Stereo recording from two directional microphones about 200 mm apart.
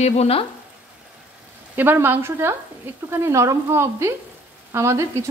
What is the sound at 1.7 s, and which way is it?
Speech, 10° right (ahead or behind).